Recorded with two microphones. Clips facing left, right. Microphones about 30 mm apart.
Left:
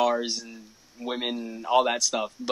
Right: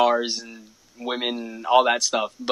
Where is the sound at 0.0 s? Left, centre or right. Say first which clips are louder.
Right 4 dB; right.